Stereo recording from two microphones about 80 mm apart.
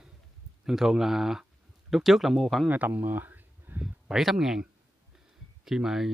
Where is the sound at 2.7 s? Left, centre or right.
Right.